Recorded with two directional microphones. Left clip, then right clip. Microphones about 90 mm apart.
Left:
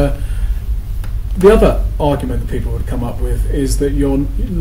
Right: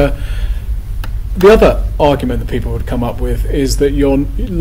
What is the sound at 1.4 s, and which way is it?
Speech, 20° right (ahead or behind).